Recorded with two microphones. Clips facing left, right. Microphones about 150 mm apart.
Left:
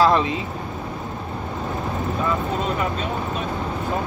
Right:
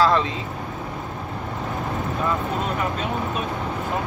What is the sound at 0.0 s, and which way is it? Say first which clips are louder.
Speech: left 2 dB; 15° left (ahead or behind).